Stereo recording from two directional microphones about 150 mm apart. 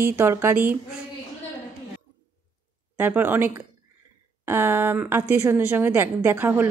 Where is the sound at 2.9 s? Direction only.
15° right (ahead or behind).